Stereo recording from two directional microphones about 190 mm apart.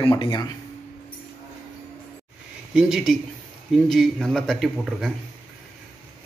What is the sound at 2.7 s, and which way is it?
Speech, 5° right (ahead or behind).